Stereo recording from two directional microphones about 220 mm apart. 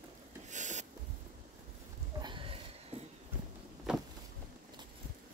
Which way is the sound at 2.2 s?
25° right (ahead or behind).